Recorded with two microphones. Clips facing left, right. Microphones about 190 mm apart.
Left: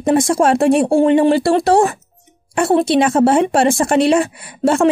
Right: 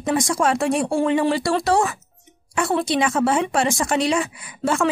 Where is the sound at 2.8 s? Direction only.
60° left (ahead or behind).